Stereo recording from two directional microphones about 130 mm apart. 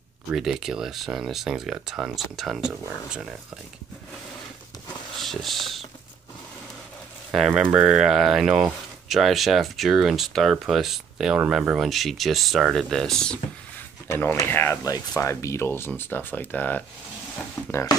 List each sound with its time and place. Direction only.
0.3 s speech: 5° right (ahead or behind)
5.2 s speech: centre (ahead or behind)
7.2 s speech: 5° right (ahead or behind)
14.0 s speech: 20° left (ahead or behind)
17.6 s speech: 30° left (ahead or behind)